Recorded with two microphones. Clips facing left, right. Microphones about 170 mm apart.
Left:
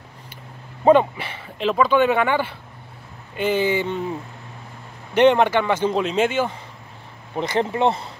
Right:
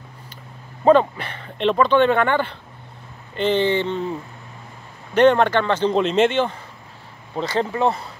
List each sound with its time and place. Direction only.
0.8 s speech: 10° left (ahead or behind)
5.1 s speech: 10° left (ahead or behind)
7.3 s speech: 20° left (ahead or behind)